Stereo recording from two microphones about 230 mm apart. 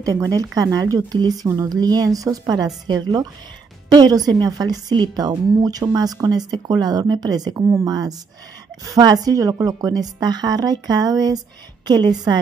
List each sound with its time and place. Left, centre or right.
0.0 s a woman's voice: centre